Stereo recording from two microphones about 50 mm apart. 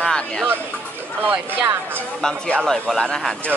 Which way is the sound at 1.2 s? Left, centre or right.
Right.